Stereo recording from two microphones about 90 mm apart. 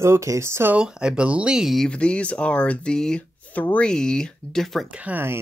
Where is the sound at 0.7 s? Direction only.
10° right (ahead or behind).